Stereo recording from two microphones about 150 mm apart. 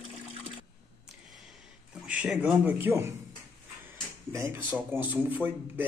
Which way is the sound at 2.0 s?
5° right (ahead or behind).